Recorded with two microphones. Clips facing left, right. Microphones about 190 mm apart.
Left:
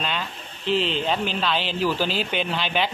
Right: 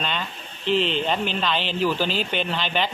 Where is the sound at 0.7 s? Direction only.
40° left (ahead or behind).